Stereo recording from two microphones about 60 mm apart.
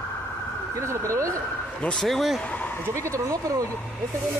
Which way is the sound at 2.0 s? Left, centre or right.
Centre.